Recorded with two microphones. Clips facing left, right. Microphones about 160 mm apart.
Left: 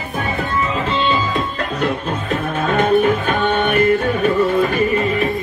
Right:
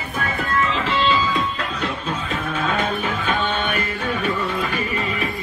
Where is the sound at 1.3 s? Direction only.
50° left (ahead or behind).